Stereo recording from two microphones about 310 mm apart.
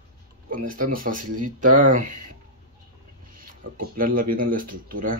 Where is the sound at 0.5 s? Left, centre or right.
Right.